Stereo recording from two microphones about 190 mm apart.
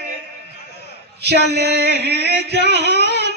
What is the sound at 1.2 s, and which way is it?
A woman's voice, 60° right (ahead or behind).